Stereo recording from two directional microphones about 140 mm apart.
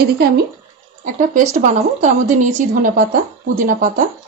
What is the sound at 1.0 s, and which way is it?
Speech, 70° right (ahead or behind).